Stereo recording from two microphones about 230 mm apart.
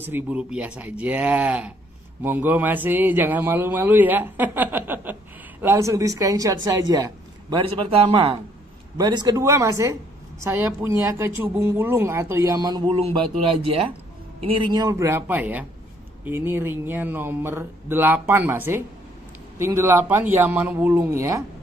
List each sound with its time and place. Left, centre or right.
0.0 s speech: centre